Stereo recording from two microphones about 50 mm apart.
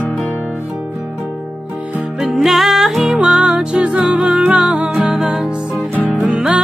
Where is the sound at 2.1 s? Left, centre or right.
Centre.